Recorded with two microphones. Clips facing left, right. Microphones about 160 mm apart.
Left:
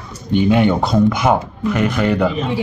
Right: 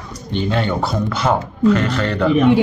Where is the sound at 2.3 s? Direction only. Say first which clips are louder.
Right 8 dB; 65° right (ahead or behind).